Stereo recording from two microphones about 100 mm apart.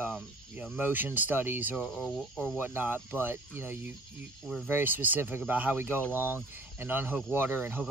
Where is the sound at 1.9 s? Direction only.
5° left (ahead or behind).